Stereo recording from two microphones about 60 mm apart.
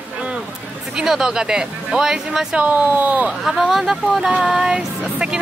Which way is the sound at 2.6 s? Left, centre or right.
Right.